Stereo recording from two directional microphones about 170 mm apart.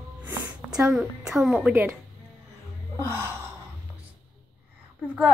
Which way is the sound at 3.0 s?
15° right (ahead or behind).